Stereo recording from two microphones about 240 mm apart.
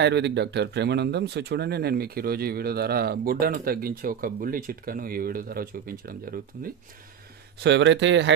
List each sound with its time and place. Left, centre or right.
0.0 s speech: right